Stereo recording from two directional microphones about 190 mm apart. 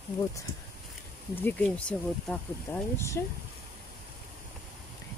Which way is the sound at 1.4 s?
10° left (ahead or behind).